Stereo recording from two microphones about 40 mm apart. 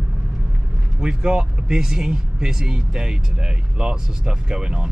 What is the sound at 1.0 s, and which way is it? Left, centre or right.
Speech, right.